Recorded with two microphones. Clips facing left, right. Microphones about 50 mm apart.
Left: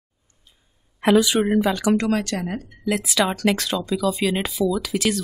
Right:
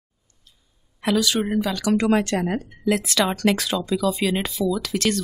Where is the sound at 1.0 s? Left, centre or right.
Left.